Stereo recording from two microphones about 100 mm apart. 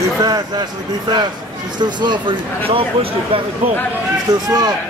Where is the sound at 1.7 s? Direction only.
50° right (ahead or behind).